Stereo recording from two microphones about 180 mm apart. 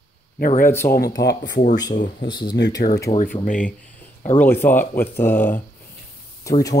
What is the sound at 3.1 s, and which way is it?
Speech, 35° left (ahead or behind).